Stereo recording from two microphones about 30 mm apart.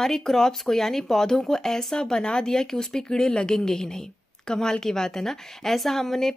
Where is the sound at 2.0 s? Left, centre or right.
Left.